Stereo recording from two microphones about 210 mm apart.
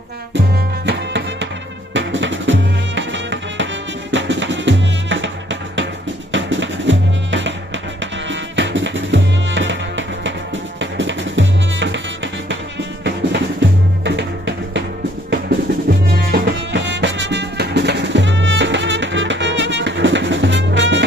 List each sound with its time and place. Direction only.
0.8 s music: 55° right (ahead or behind)
13.0 s music: 55° right (ahead or behind)